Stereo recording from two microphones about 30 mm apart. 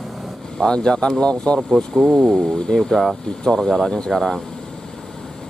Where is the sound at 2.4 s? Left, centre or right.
Centre.